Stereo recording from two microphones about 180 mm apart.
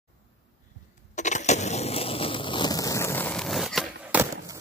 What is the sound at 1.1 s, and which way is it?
Skateboard, 40° left (ahead or behind).